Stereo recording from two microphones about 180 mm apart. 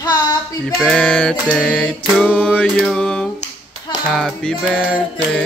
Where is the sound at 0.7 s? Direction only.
5° left (ahead or behind).